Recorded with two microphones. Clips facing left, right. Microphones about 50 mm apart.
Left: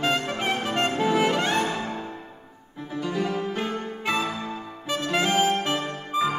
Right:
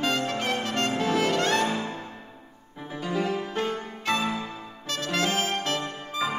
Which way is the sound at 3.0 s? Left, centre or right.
Centre.